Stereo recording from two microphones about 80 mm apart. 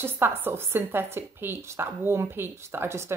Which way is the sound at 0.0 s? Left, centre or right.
Right.